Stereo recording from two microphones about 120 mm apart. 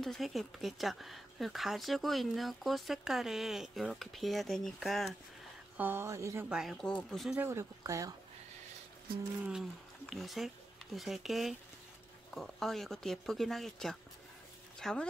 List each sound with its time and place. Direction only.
0.0 s speech: centre (ahead or behind)
5.8 s speech: 20° right (ahead or behind)
6.5 s speech: 5° right (ahead or behind)
6.9 s speech: 5° left (ahead or behind)
7.4 s speech: 25° right (ahead or behind)
9.5 s speech: centre (ahead or behind)